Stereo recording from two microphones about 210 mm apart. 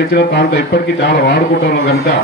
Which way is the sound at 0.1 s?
50° left (ahead or behind).